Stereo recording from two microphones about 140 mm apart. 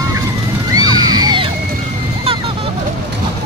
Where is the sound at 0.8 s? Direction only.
25° right (ahead or behind).